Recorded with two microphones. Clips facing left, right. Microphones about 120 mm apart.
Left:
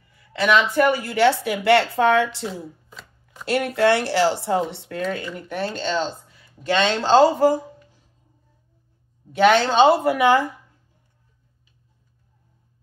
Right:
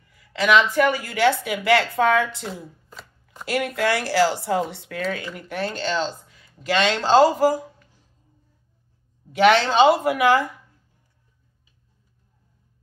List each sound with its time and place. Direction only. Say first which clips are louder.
0.1 s a woman's voice: right 1 dB; 30° left (ahead or behind)
2.9 s chopping: right 1 dB; centre (ahead or behind)
3.4 s a woman's voice: left 4 dB; 30° left (ahead or behind)
9.6 s a woman's voice: left 1 dB; 25° left (ahead or behind)